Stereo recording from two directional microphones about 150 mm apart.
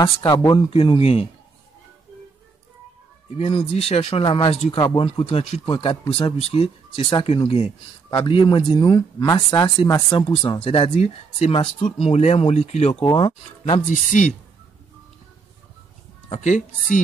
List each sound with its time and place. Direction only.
0.0 s speech: 25° left (ahead or behind)
0.7 s speech: 40° left (ahead or behind)
3.3 s speech: 40° left (ahead or behind); by 10.2 s 25° left (ahead or behind)
10.2 s speech: 35° left (ahead or behind)
13.0 s speech: 30° left (ahead or behind)
13.8 s speech: 55° left (ahead or behind)
16.3 s speech: 55° left (ahead or behind)